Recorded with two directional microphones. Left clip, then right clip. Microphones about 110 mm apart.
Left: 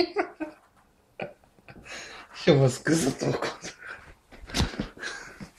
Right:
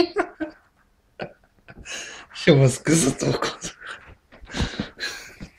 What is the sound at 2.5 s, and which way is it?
Beatboxing, 25° right (ahead or behind).